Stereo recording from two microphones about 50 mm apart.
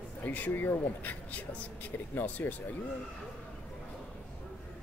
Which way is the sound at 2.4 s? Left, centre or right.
Left.